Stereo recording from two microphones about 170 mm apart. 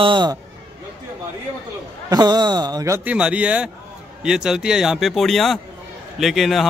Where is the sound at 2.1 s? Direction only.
25° right (ahead or behind).